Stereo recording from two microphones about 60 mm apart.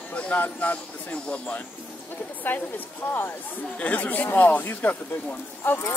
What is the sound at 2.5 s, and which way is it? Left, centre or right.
Speech, left.